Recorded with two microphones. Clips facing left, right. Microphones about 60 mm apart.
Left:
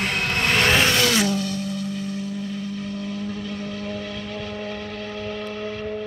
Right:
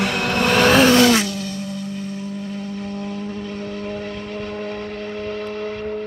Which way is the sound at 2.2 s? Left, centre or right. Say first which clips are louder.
Right 1 dB; right.